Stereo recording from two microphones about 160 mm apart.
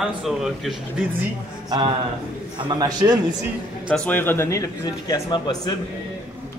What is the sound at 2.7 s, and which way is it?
Speech, 25° right (ahead or behind).